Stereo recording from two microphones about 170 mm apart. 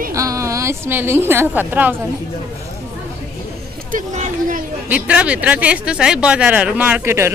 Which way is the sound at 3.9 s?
50° right (ahead or behind).